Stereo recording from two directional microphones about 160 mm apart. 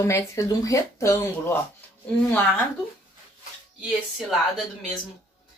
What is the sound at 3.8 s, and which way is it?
Speech, centre (ahead or behind).